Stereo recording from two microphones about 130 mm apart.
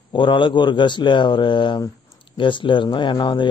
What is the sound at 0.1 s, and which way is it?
Speech, 40° left (ahead or behind).